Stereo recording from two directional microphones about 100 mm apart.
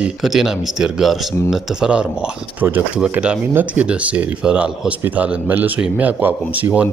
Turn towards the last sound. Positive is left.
turn(degrees=-15)  # may be behind; listen again after turning